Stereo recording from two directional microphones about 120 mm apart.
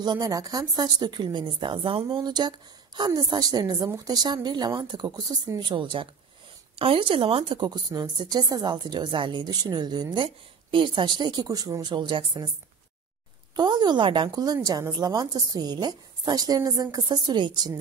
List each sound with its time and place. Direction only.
0.0 s a woman's voice: 35° right (ahead or behind)
13.6 s a woman's voice: 35° right (ahead or behind)